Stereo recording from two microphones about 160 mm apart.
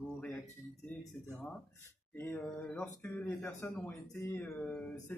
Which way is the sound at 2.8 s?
15° left (ahead or behind).